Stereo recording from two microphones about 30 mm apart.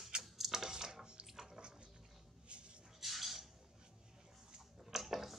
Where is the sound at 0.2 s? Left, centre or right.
Centre.